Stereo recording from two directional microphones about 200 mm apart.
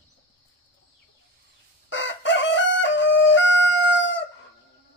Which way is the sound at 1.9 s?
65° left (ahead or behind).